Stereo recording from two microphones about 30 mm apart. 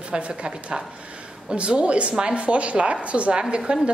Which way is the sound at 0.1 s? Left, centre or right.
Right.